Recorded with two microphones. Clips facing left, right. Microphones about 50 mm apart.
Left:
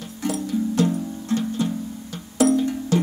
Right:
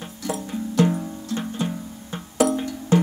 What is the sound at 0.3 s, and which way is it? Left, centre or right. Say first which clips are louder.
Music: left 4 dB; right.